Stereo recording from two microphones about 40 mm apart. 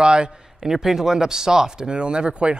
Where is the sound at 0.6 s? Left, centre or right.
Centre; by 2.5 s right.